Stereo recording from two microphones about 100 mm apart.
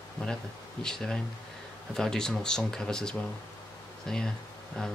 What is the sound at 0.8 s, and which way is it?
A man's voice, 5° left (ahead or behind).